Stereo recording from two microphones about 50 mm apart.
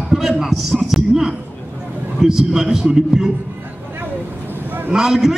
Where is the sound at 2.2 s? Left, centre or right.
Centre.